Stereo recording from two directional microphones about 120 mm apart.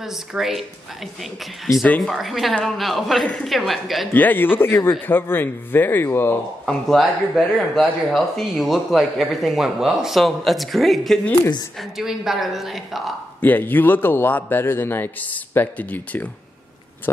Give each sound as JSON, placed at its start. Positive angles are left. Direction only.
{"t": 0.0, "sound": "speech", "side_deg": -5}
{"t": 1.9, "sound": "speech", "side_deg": 0}
{"t": 4.1, "sound": "a man's voice", "side_deg": 15}
{"t": 6.6, "sound": "speech", "side_deg": 0}
{"t": 13.4, "sound": "a man's voice", "side_deg": 15}